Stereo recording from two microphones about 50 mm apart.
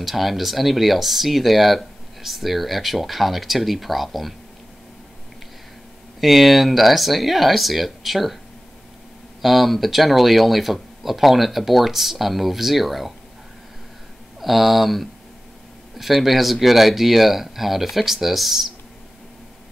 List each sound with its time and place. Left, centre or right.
0.0 s speech: centre
6.2 s speech: centre
9.4 s speech: centre
14.4 s speech: centre